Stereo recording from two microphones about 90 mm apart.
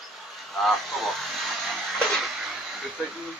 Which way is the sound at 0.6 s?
Centre (ahead or behind).